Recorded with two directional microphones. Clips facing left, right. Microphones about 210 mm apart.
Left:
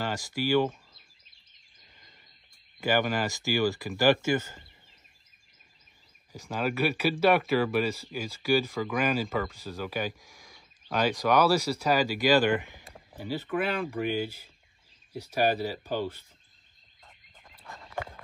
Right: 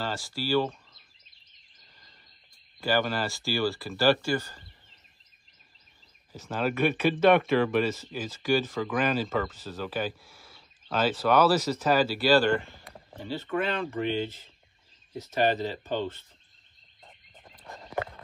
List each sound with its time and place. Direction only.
0.0 s speech: 15° left (ahead or behind)
2.8 s speech: 15° left (ahead or behind)
6.3 s speech: 10° left (ahead or behind)
17.5 s a sound: 35° right (ahead or behind)